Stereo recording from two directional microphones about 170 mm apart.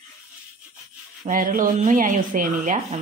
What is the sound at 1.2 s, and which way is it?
Speech, 50° right (ahead or behind).